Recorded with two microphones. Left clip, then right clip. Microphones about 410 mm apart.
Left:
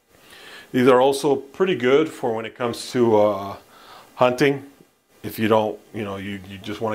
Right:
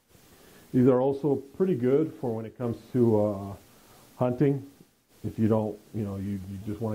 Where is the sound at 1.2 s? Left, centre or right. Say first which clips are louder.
Left 7 dB; centre.